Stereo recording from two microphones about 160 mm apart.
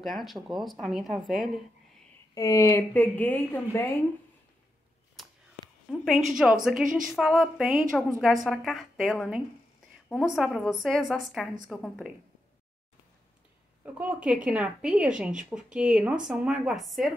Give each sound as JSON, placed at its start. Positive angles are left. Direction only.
{"t": 0.0, "sound": "a woman's voice", "side_deg": 0}
{"t": 2.3, "sound": "speech", "side_deg": 20}
{"t": 5.9, "sound": "a woman's voice", "side_deg": 0}
{"t": 13.9, "sound": "a woman's voice", "side_deg": -10}